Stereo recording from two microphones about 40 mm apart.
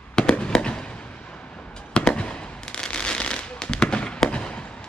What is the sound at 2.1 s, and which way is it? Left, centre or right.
Fireworks, left.